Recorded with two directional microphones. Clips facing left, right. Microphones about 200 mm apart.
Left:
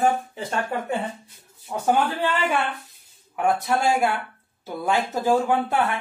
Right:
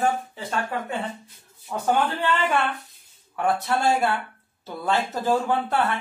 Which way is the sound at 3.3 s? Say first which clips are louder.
Left 1 dB; 15° left (ahead or behind).